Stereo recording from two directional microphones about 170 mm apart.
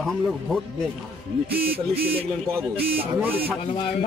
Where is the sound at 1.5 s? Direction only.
65° right (ahead or behind).